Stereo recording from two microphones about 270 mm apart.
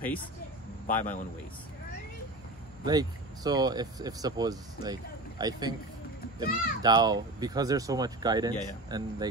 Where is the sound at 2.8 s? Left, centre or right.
Centre.